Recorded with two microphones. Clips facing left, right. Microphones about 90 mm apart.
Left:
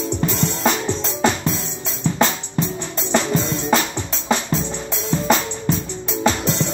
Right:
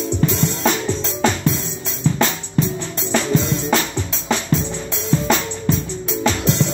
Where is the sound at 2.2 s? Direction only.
Centre (ahead or behind).